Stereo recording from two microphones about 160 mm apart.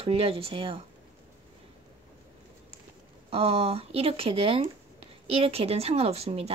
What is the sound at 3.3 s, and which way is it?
Speech, 35° right (ahead or behind).